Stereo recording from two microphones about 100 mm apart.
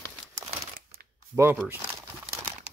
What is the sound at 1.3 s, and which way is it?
Speech, 25° right (ahead or behind).